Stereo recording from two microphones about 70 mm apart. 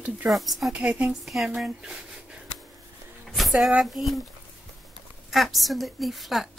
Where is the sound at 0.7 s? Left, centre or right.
Right.